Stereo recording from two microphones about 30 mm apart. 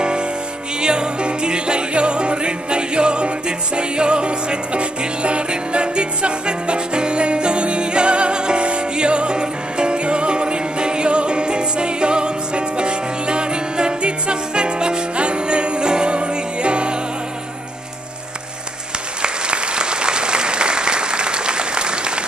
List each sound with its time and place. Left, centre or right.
0.0 s music: right
19.2 s applause: right